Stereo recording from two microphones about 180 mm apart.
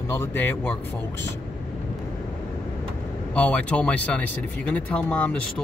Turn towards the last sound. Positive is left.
turn(degrees=5)  # may be behind; listen again after turning